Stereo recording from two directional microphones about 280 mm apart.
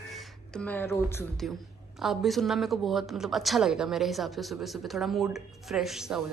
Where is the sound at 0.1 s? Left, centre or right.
Centre.